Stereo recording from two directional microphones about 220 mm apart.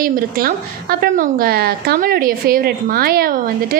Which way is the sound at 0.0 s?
40° right (ahead or behind).